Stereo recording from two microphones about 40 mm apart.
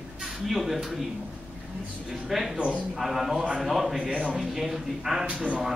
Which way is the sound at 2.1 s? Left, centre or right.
Centre.